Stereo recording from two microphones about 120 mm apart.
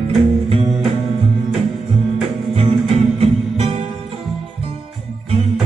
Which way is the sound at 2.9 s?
50° right (ahead or behind).